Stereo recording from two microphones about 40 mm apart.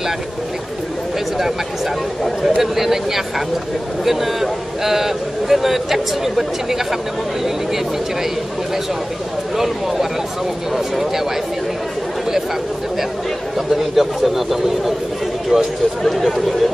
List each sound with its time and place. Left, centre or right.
2.4 s a man's voice: centre
10.7 s speech: centre
13.6 s a man's voice: centre
15.5 s speech: right
16.0 s a man's voice: centre